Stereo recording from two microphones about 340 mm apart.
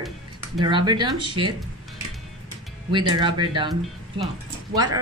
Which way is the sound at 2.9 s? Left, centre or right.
Centre.